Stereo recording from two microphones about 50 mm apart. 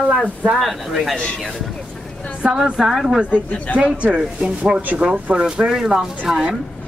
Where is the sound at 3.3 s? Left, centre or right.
Left.